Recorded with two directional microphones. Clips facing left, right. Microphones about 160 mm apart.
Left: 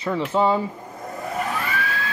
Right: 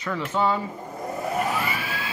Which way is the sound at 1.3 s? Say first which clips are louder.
Left 2 dB; 5° right (ahead or behind).